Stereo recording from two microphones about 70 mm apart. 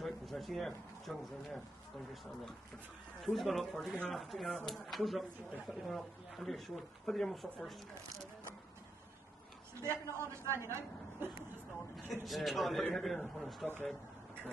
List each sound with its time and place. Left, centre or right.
0.0 s speech: centre
3.2 s a man's voice: centre
9.8 s a woman's voice: right
12.1 s a man's voice: centre